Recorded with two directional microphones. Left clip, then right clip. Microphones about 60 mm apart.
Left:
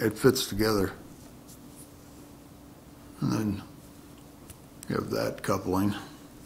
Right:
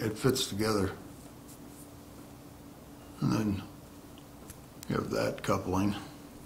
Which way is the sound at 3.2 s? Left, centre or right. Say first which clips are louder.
Left 1 dB; centre.